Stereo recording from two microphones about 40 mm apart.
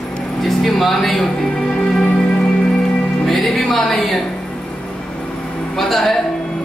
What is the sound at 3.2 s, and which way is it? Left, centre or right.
Music, centre.